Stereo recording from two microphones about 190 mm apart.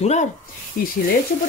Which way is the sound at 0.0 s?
35° left (ahead or behind).